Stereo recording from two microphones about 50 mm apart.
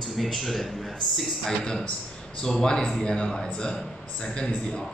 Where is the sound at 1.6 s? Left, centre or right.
Centre.